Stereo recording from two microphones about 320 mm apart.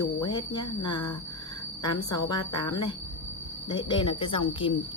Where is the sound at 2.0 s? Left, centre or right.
Centre.